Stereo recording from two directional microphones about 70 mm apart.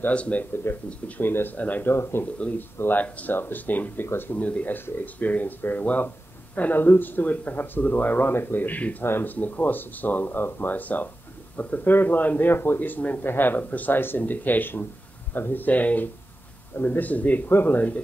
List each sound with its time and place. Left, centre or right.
0.0 s a man's voice: centre
2.3 s a man's voice: centre
4.4 s a man's voice: centre